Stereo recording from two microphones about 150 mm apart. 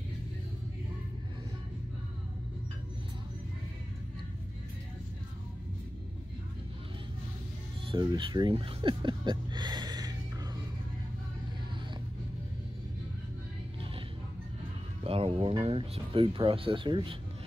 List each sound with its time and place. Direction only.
7.8 s speech: 30° right (ahead or behind)
15.0 s speech: 40° right (ahead or behind)